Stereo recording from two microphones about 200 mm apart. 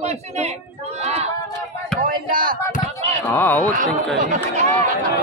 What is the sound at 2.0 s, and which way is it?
Speech, 45° right (ahead or behind).